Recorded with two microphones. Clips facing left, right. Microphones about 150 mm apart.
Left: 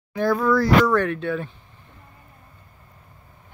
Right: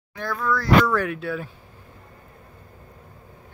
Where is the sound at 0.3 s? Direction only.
25° left (ahead or behind).